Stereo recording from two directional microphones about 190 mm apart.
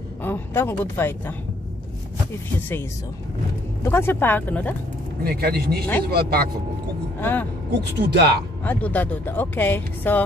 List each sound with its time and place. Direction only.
0.2 s speech: 10° left (ahead or behind)
3.8 s speech: 10° left (ahead or behind)
5.2 s speech: 55° right (ahead or behind)
7.2 s speech: 10° left (ahead or behind)
8.0 s speech: 60° right (ahead or behind)
8.6 s speech: 10° left (ahead or behind)